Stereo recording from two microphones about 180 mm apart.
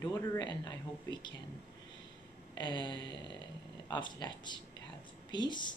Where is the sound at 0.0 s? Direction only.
25° left (ahead or behind).